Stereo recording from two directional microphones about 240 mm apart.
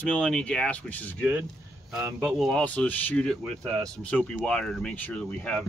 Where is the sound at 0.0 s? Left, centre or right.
Centre.